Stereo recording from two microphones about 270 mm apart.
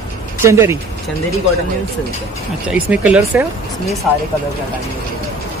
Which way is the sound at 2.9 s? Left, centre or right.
Centre.